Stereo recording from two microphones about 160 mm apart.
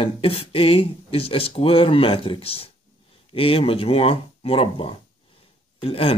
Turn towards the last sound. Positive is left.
turn(degrees=35)  # may be behind; listen again after turning